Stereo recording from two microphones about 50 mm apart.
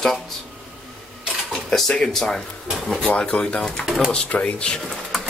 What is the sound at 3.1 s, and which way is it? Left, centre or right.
Speech, left.